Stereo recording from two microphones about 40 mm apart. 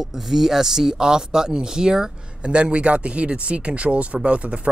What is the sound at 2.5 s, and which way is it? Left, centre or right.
Speech, right.